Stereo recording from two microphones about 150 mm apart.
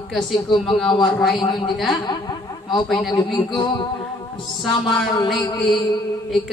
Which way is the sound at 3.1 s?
30° left (ahead or behind).